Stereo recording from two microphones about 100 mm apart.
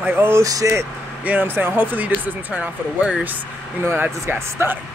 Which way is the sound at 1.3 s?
20° right (ahead or behind).